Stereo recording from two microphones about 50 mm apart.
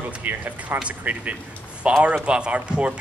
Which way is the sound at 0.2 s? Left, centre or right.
Right.